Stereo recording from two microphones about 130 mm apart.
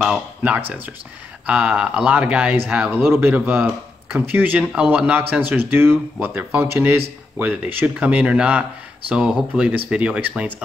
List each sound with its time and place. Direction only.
0.0 s speech: 10° right (ahead or behind)